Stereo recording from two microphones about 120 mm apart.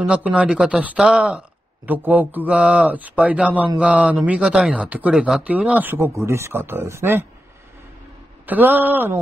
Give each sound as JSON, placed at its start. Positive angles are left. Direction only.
{"t": 0.0, "sound": "speech", "side_deg": -10}
{"t": 8.5, "sound": "speech", "side_deg": -15}